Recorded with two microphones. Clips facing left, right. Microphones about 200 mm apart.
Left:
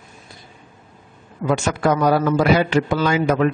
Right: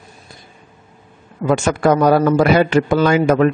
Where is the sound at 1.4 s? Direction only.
50° right (ahead or behind).